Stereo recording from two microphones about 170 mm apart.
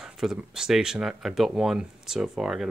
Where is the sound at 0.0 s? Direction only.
Centre (ahead or behind).